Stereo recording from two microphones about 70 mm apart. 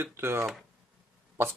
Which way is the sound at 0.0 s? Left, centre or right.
Right.